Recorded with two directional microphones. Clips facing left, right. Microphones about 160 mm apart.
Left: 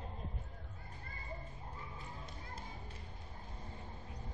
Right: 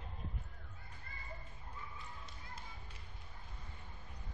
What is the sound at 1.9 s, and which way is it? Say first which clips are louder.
Music: left 3 dB; 50° left (ahead or behind).